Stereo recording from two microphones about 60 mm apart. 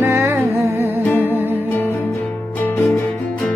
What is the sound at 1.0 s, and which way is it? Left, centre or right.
Music, left.